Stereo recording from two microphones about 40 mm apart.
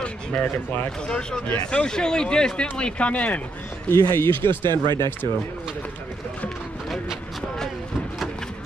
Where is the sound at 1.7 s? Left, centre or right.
Left.